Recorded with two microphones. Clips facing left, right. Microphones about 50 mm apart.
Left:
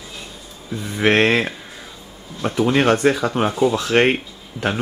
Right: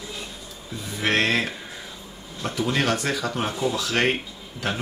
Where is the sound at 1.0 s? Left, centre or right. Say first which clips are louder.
Left 6 dB; left.